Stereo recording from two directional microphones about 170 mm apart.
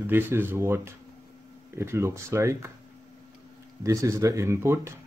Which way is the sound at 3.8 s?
20° right (ahead or behind).